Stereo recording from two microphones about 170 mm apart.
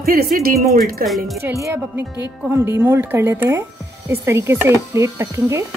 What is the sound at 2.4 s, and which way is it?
Speech, 15° right (ahead or behind).